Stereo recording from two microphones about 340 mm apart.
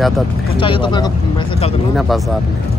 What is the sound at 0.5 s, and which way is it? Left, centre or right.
Speech, centre.